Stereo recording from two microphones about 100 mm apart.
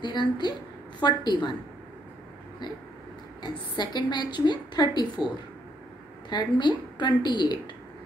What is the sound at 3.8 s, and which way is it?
A woman's voice, 45° left (ahead or behind).